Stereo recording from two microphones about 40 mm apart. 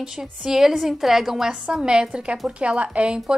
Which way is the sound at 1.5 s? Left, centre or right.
Right.